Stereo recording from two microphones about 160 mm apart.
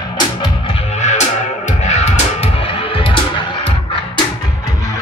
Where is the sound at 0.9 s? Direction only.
45° left (ahead or behind).